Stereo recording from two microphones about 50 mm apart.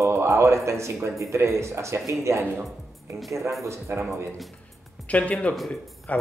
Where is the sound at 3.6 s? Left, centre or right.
Right.